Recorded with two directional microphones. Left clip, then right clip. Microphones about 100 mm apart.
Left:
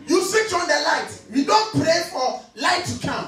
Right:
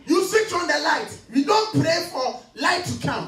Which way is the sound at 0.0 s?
15° left (ahead or behind).